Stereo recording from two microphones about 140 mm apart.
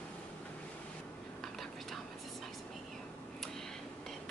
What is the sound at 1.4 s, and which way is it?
Whispering, centre (ahead or behind).